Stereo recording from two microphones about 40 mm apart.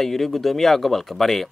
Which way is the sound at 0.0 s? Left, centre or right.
Centre.